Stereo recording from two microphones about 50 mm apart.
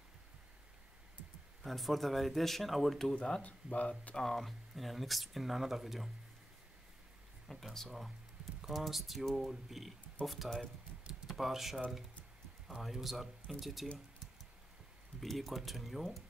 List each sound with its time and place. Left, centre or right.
1.6 s speech: centre
3.2 s speech: centre
3.4 s speech: left
4.2 s speech: centre
7.4 s speech: centre
15.1 s speech: centre